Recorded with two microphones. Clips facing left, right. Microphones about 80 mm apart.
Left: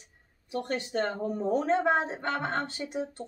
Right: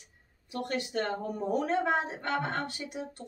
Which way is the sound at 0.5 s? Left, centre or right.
Left.